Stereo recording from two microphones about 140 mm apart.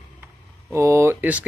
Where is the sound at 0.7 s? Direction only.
20° right (ahead or behind).